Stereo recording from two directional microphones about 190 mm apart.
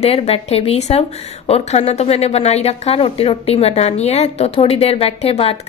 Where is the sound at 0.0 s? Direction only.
35° left (ahead or behind).